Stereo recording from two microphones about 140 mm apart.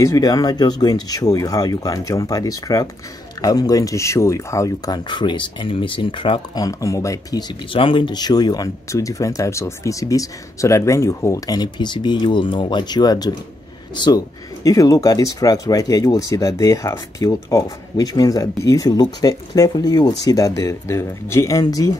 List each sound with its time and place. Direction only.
0.0 s speech: 25° left (ahead or behind)